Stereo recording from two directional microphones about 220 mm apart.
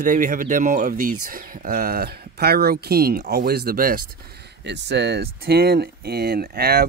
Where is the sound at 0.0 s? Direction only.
35° right (ahead or behind).